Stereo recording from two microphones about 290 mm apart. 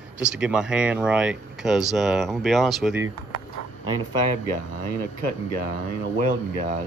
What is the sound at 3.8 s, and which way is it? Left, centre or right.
Speech, left.